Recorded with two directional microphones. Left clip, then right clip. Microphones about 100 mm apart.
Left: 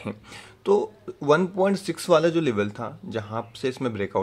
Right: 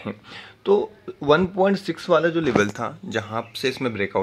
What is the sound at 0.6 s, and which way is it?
Speech, centre (ahead or behind).